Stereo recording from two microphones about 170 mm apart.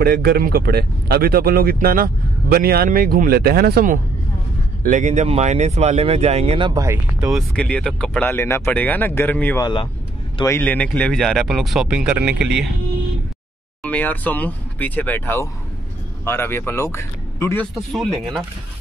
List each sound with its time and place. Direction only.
0.0 s speech: 70° right (ahead or behind)
4.8 s speech: 45° right (ahead or behind); by 7.0 s 20° right (ahead or behind)
7.2 s speech: centre (ahead or behind)
9.6 s speech: 25° left (ahead or behind)
10.4 s speech: 10° left (ahead or behind); by 12.7 s 5° right (ahead or behind)
13.8 s speech: 10° left (ahead or behind)